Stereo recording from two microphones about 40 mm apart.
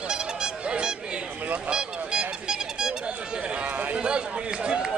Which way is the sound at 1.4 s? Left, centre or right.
Right.